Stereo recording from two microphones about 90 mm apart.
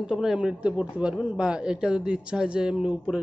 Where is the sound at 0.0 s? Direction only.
5° right (ahead or behind).